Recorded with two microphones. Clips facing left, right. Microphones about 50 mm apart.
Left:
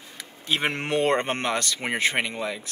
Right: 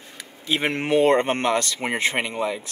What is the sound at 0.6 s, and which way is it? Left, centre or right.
Speech, centre.